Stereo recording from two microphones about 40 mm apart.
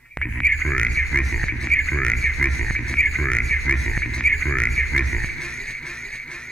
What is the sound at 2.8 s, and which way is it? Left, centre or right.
Speech, centre.